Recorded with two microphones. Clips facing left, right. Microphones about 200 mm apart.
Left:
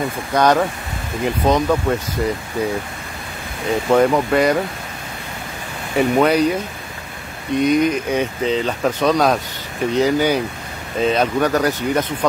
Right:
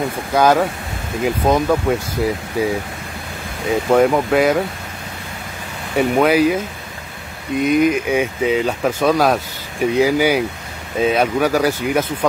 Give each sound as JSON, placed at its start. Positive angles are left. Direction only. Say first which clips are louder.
{"t": 0.3, "sound": "speech", "louder": "right 1 dB", "side_deg": -5}
{"t": 3.9, "sound": "speech", "louder": "right 1 dB", "side_deg": -5}
{"t": 5.9, "sound": "speech", "louder": "right 1 dB", "side_deg": -5}